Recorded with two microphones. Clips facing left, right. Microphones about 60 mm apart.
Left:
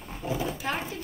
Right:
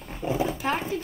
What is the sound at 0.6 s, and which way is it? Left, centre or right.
Speech, right.